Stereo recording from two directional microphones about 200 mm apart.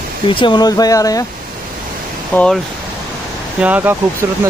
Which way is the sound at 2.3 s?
5° left (ahead or behind).